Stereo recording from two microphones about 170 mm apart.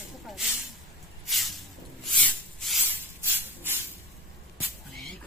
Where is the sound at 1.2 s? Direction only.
Centre (ahead or behind).